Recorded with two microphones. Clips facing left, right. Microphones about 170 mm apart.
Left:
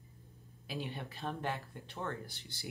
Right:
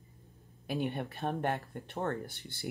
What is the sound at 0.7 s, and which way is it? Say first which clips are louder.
Speech: right 7 dB; 55° right (ahead or behind).